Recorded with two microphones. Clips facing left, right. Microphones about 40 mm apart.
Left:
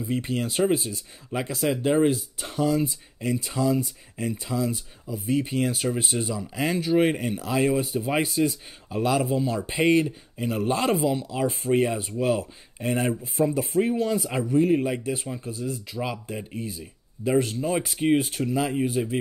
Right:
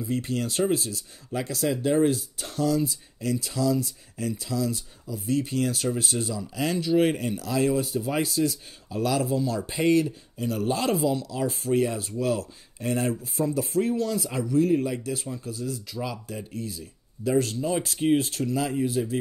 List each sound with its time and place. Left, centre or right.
0.0 s speech: left